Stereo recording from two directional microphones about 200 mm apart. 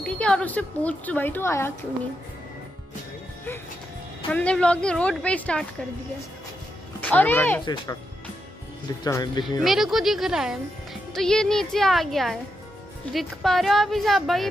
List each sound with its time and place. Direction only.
0.0 s speech: 5° left (ahead or behind)
4.3 s a woman's voice: 5° left (ahead or behind)
7.0 s speech: 10° left (ahead or behind)
7.6 s speech: 20° left (ahead or behind)
9.0 s speech: 20° left (ahead or behind)
9.6 s a woman's voice: centre (ahead or behind)